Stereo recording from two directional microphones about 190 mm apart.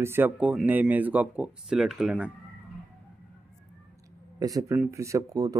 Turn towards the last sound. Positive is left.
turn(degrees=-20)  # may be behind; listen again after turning